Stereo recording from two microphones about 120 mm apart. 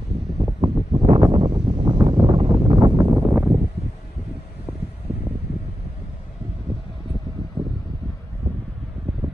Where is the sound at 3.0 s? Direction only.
15° right (ahead or behind).